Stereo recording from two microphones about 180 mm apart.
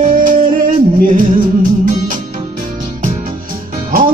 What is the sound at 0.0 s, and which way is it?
Music, 50° right (ahead or behind).